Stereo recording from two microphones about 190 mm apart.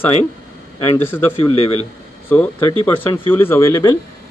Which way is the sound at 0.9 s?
10° left (ahead or behind).